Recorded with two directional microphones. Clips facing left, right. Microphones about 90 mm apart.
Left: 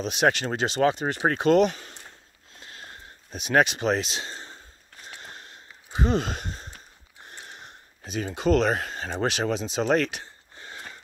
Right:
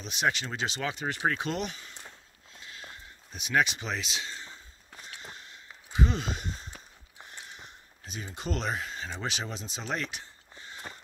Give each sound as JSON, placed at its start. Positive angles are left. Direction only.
{"t": 0.0, "sound": "speech", "side_deg": 65}
{"t": 2.6, "sound": "a sound", "side_deg": 45}
{"t": 8.0, "sound": "speech", "side_deg": 85}